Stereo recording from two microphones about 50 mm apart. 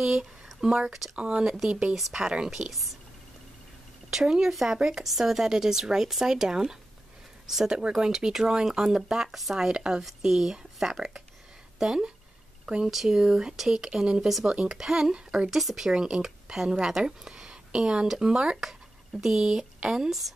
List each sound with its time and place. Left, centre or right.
0.0 s speech: centre
2.7 s speech: centre
4.1 s speech: centre
15.1 s speech: centre
15.5 s speech: centre